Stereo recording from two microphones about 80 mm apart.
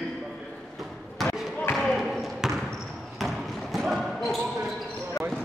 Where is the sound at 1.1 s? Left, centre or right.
Centre.